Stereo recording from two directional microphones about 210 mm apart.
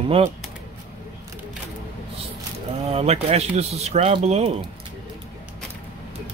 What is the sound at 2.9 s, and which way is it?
Speech, 30° right (ahead or behind).